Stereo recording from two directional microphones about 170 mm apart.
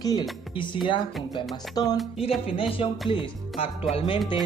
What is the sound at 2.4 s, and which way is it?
Speech, 35° left (ahead or behind).